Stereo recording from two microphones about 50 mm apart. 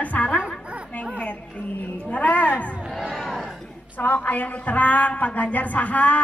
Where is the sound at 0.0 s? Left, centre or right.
Left.